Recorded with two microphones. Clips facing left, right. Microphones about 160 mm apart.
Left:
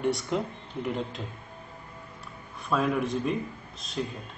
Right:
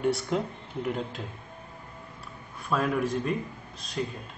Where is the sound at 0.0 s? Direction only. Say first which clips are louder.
Right 1 dB; 5° right (ahead or behind).